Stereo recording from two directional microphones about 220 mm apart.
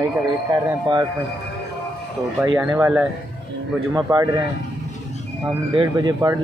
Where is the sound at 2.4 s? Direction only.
10° right (ahead or behind).